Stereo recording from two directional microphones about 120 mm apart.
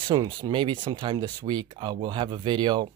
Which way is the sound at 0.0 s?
40° right (ahead or behind).